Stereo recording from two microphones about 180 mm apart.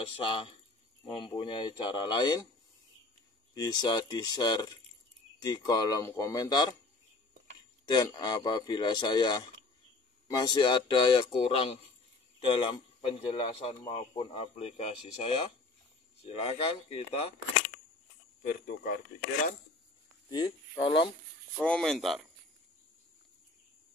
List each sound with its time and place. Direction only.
0.0 s speech: 30° left (ahead or behind)
3.5 s speech: 25° left (ahead or behind)
7.8 s speech: 25° left (ahead or behind)
20.2 s speech: 20° left (ahead or behind)
21.6 s speech: 5° left (ahead or behind)